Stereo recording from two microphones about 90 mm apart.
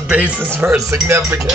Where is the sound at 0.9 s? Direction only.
30° right (ahead or behind).